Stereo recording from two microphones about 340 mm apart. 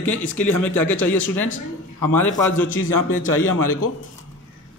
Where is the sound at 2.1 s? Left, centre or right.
Centre.